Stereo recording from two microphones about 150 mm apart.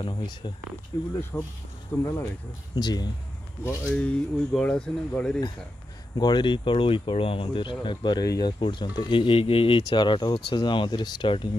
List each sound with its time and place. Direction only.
0.0 s speech: 30° left (ahead or behind)
1.3 s speech: 10° left (ahead or behind)
2.7 s speech: 30° left (ahead or behind)
3.6 s speech: 5° left (ahead or behind)
6.1 s speech: 30° left (ahead or behind)